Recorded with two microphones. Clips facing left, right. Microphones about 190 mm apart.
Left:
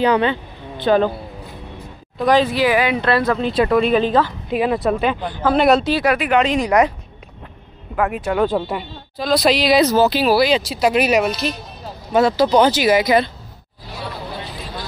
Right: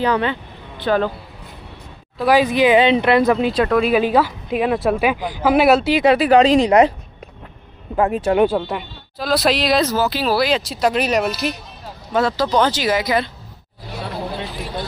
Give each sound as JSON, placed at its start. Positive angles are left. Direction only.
{"t": 0.0, "sound": "speech", "side_deg": 20}
{"t": 2.1, "sound": "speech", "side_deg": -10}
{"t": 3.5, "sound": "speech", "side_deg": 0}
{"t": 5.9, "sound": "speech", "side_deg": -30}
{"t": 7.9, "sound": "speech", "side_deg": -30}
{"t": 8.5, "sound": "speech", "side_deg": 0}
{"t": 9.8, "sound": "speech", "side_deg": 20}
{"t": 10.3, "sound": "speech", "side_deg": 0}